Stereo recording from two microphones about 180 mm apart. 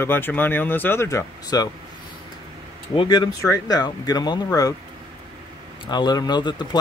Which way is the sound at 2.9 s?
25° left (ahead or behind).